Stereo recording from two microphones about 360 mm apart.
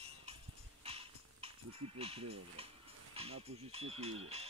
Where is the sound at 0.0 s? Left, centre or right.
Centre.